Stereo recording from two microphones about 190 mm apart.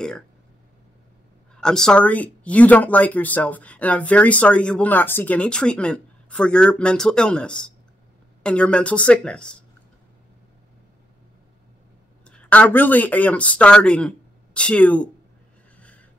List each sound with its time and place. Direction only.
1.5 s a woman's voice: 5° left (ahead or behind)
12.3 s speech: 5° left (ahead or behind)